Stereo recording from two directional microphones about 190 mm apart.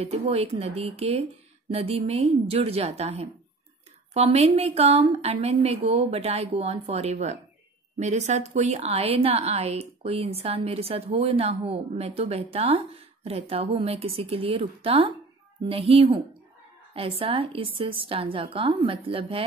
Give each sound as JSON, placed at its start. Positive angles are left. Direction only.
{"t": 0.0, "sound": "a woman's voice", "side_deg": -30}